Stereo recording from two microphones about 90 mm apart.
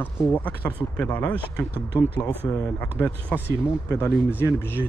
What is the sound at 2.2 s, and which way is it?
Speech, 40° left (ahead or behind).